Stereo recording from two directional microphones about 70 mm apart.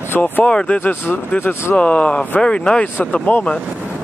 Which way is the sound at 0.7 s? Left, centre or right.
Left.